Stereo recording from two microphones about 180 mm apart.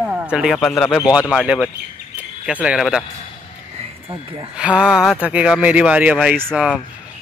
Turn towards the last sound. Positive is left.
turn(degrees=-5)  # may be behind; listen again after turning